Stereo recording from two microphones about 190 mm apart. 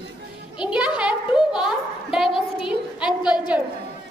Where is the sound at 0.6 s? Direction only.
5° right (ahead or behind).